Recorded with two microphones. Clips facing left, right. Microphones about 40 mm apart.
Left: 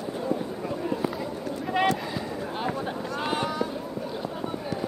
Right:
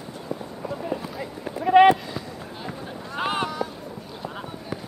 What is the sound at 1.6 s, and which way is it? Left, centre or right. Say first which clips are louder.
Run: right 11 dB; right.